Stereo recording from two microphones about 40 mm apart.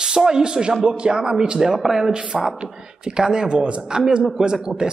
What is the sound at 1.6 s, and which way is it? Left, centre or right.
Speech, centre.